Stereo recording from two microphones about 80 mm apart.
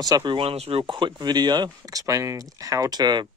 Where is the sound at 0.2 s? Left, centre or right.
Right.